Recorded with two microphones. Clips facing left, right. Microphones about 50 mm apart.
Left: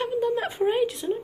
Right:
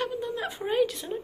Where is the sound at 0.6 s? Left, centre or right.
Centre.